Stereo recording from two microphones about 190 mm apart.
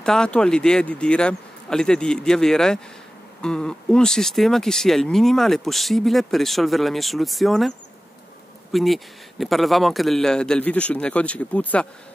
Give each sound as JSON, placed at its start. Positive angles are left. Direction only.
{"t": 0.0, "sound": "speech", "side_deg": 5}
{"t": 8.7, "sound": "speech", "side_deg": 0}